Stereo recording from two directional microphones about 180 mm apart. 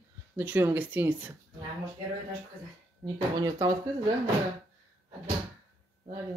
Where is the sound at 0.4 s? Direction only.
10° right (ahead or behind).